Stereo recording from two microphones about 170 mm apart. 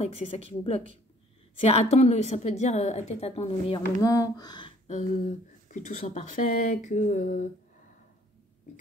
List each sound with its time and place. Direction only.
0.0 s a woman's voice: 40° left (ahead or behind)
4.0 s speech: 20° left (ahead or behind)
4.8 s a sound: 45° left (ahead or behind)
5.2 s speech: 45° left (ahead or behind)